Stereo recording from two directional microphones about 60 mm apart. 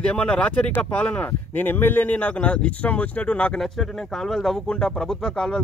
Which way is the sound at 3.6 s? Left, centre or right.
Centre.